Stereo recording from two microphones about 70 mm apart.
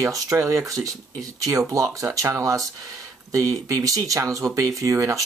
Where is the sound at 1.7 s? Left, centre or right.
Right.